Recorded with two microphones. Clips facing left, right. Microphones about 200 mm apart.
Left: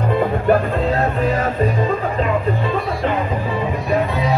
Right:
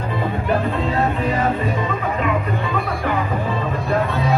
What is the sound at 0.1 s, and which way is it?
Music, 45° left (ahead or behind).